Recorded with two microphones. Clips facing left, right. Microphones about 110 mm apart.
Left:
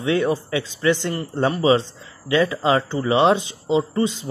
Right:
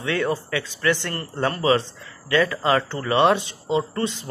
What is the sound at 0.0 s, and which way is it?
Speech, 20° left (ahead or behind).